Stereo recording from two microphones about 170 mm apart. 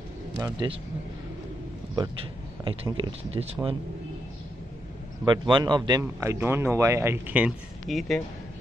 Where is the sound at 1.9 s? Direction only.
25° right (ahead or behind).